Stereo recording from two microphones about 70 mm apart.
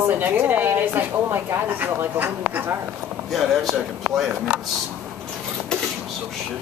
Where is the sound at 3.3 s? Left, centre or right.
Centre.